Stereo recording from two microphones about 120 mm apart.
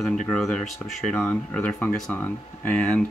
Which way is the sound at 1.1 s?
15° left (ahead or behind).